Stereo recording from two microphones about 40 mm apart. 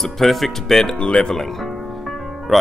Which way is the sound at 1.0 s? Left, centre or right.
Left.